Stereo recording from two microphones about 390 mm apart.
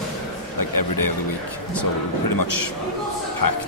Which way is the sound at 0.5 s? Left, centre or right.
Left.